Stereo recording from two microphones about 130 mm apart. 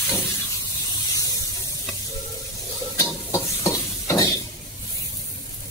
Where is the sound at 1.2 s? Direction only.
25° left (ahead or behind).